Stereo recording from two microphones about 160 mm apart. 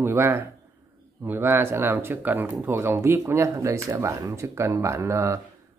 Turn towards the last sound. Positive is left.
turn(degrees=-20)  # may be behind; listen again after turning